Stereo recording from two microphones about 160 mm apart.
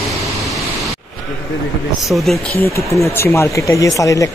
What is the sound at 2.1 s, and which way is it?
Speech, centre (ahead or behind).